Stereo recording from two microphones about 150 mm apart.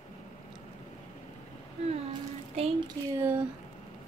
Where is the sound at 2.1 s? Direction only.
40° right (ahead or behind).